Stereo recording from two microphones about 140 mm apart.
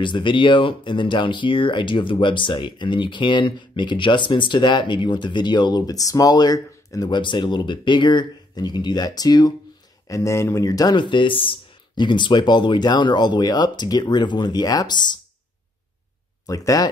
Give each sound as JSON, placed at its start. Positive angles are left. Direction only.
{"t": 0.0, "sound": "speech", "side_deg": 35}
{"t": 16.4, "sound": "speech", "side_deg": 25}